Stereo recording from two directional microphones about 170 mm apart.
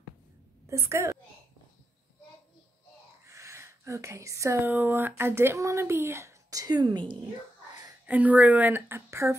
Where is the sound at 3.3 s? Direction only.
15° right (ahead or behind).